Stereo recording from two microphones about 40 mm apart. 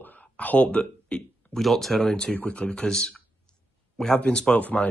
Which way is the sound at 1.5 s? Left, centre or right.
Centre.